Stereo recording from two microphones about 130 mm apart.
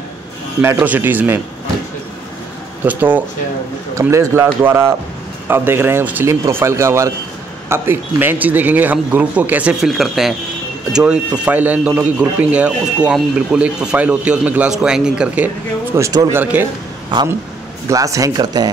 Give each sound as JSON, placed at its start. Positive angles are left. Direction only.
{"t": 0.6, "sound": "speech", "side_deg": -15}
{"t": 2.8, "sound": "speech", "side_deg": -15}
{"t": 17.8, "sound": "speech", "side_deg": -25}